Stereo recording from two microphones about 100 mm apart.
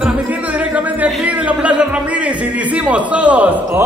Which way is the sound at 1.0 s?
15° right (ahead or behind).